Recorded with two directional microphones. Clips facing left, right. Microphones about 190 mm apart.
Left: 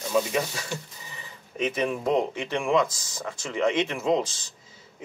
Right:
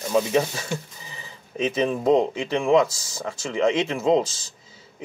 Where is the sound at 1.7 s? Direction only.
25° right (ahead or behind).